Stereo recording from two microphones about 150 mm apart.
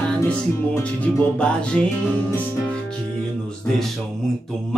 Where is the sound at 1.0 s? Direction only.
5° left (ahead or behind).